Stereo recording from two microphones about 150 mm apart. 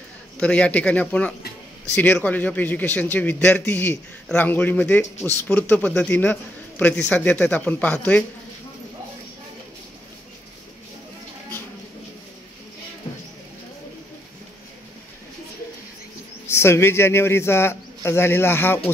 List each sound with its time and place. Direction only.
0.4 s a man's voice: 5° left (ahead or behind)
16.4 s a man's voice: 15° left (ahead or behind)